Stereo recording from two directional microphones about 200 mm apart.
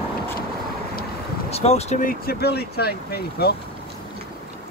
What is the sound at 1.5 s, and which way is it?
Speech, 30° left (ahead or behind).